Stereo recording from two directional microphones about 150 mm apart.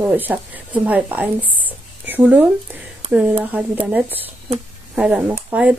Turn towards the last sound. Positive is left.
turn(degrees=-10)  # may be behind; listen again after turning